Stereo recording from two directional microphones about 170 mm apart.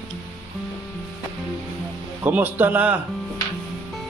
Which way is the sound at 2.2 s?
10° right (ahead or behind).